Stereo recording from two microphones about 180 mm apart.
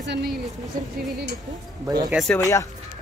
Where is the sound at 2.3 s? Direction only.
15° left (ahead or behind).